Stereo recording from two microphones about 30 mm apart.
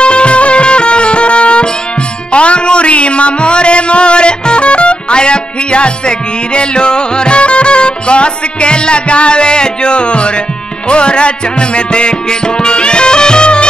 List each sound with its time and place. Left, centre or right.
0.0 s music: left